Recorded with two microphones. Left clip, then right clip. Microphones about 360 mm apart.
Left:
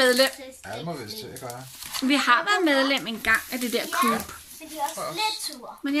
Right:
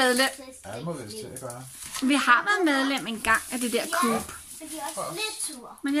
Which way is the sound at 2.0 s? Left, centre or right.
Centre.